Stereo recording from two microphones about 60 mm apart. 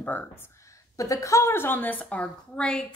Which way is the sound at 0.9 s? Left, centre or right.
Left.